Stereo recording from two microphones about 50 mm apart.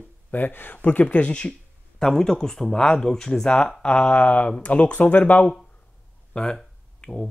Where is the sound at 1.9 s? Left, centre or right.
Centre; by 5.5 s left.